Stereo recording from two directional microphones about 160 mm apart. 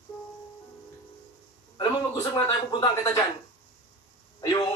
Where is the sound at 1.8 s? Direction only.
30° left (ahead or behind).